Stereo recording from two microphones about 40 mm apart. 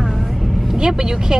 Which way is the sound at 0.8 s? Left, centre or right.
Centre.